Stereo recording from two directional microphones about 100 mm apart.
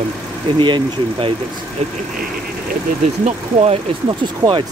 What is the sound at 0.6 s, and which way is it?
Speech, 60° right (ahead or behind).